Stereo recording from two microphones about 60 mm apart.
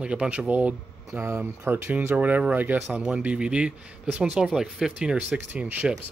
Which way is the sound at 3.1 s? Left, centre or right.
Right.